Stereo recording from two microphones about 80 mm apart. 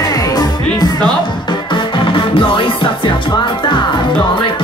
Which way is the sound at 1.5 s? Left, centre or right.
Left.